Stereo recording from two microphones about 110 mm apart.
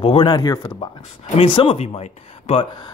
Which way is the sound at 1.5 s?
55° left (ahead or behind).